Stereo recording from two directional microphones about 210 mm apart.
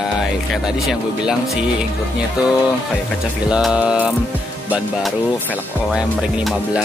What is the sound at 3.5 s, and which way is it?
Music, 5° right (ahead or behind).